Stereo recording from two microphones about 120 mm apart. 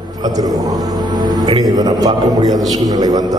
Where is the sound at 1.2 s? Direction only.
35° right (ahead or behind).